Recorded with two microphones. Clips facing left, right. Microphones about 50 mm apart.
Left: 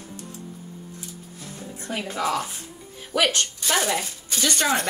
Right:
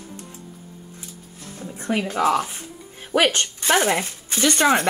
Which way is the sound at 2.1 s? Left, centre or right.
Right.